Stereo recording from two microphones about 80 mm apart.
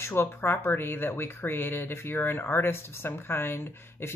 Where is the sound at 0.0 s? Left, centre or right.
Left.